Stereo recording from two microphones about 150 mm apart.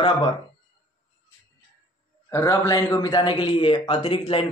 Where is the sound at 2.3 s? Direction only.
20° left (ahead or behind).